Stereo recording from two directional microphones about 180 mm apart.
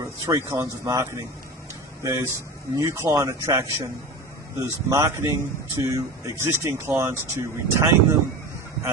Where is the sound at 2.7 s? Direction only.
15° right (ahead or behind).